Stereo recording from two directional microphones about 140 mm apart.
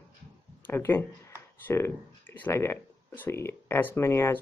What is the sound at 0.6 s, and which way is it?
Speech, 15° left (ahead or behind).